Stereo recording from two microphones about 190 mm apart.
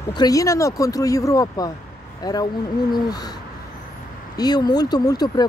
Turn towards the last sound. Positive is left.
turn(degrees=20)  # may be behind; listen again after turning